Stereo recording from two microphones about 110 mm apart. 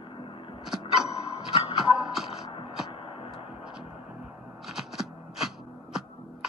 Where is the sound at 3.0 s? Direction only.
55° left (ahead or behind).